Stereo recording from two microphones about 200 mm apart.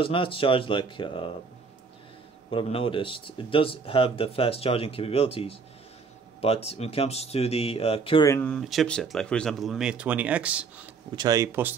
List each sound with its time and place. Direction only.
0.0 s speech: 25° left (ahead or behind)
2.5 s speech: 25° left (ahead or behind)
8.3 s speech: 10° left (ahead or behind)
11.1 s speech: 20° right (ahead or behind)